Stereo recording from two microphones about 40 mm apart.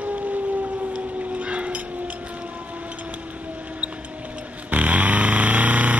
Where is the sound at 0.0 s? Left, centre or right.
Right.